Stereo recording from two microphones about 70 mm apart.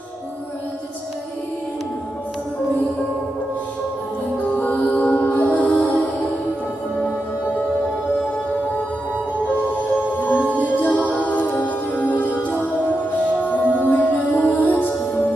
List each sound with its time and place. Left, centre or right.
4.6 s mantra: left
10.3 s music: right
10.8 s music: centre
13.5 s music: left